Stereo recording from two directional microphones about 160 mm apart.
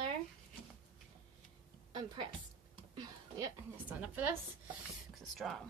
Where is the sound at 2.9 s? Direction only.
25° right (ahead or behind).